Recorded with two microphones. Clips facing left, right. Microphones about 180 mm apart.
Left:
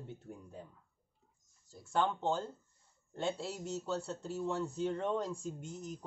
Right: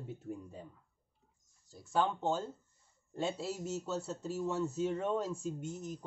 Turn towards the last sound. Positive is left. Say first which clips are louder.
# right 3 dB
turn(degrees=0)  # may be behind; listen again after turning